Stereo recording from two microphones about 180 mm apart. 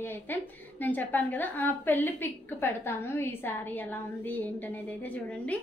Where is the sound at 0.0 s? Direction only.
10° left (ahead or behind).